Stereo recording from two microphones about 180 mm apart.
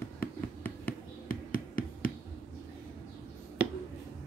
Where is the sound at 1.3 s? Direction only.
50° left (ahead or behind).